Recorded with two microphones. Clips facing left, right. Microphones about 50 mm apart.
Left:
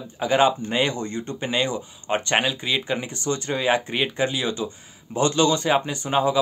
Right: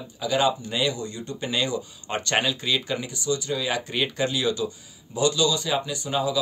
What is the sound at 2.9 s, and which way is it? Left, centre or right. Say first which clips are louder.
Speech: left 1 dB; left.